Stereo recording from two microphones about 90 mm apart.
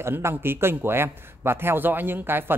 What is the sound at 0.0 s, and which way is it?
A man's voice, 25° right (ahead or behind).